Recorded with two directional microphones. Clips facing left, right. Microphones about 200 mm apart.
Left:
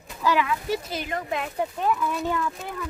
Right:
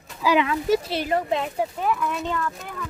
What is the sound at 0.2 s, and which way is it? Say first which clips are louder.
Speech: right 3 dB; 10° right (ahead or behind).